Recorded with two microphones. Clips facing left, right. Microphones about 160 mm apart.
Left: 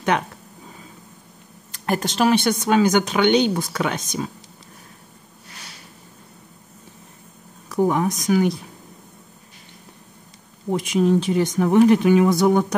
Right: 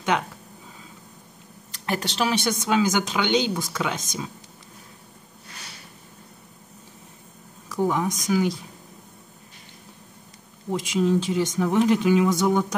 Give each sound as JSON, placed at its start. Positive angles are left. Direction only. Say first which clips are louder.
{"t": 1.7, "sound": "speech", "louder": "left 4 dB", "side_deg": 45}
{"t": 7.7, "sound": "speech", "louder": "left 4 dB", "side_deg": 55}
{"t": 10.7, "sound": "speech", "louder": "left 4 dB", "side_deg": 55}